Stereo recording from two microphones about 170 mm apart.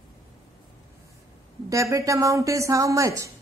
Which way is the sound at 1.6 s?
20° right (ahead or behind).